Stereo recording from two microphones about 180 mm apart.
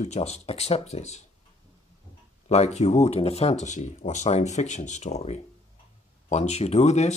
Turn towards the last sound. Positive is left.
turn(degrees=40)  # may be behind; listen again after turning